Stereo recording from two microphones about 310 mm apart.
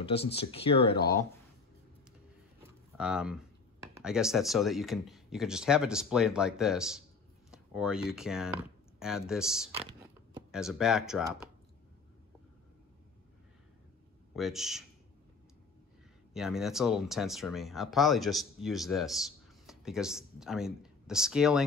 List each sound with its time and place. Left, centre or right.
0.4 s speech: centre
3.0 s speech: centre
9.8 s a sound: centre
10.5 s speech: centre
14.3 s speech: centre
16.3 s speech: centre